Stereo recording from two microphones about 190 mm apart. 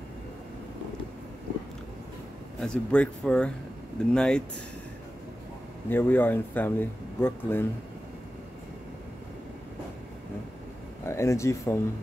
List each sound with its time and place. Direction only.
2.6 s speech: 5° left (ahead or behind)
5.9 s speech: 10° left (ahead or behind)
11.1 s speech: 15° left (ahead or behind)